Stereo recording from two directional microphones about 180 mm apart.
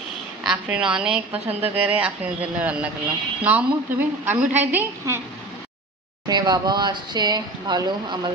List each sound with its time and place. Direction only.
0.4 s a woman's voice: 5° right (ahead or behind)
6.2 s speech: 25° right (ahead or behind)